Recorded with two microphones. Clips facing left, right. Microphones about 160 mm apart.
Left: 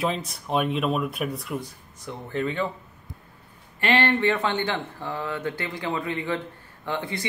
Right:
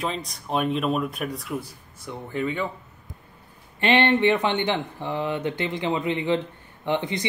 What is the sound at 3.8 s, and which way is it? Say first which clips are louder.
Speech: right 3 dB; 20° right (ahead or behind).